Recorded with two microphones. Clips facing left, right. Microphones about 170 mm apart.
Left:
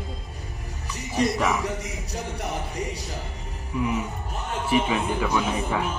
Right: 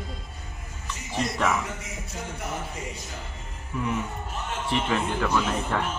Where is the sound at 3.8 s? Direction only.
5° left (ahead or behind).